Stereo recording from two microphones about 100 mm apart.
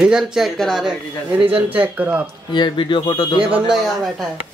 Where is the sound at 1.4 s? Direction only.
65° right (ahead or behind).